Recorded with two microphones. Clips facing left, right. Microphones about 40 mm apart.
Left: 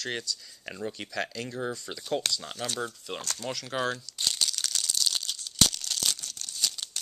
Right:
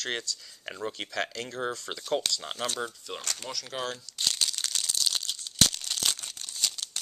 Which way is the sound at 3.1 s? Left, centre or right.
Centre.